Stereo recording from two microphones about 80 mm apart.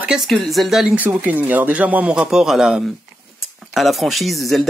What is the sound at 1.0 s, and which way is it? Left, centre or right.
A man's voice, right.